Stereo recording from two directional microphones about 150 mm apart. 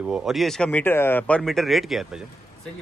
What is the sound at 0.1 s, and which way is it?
Speech, centre (ahead or behind).